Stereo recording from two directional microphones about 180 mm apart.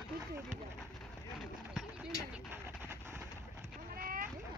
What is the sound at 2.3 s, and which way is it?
Vehicle, 10° right (ahead or behind).